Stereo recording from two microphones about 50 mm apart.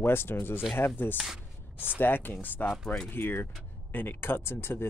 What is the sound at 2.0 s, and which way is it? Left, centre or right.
Speech, left.